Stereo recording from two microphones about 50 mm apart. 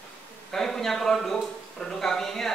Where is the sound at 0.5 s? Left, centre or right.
Centre.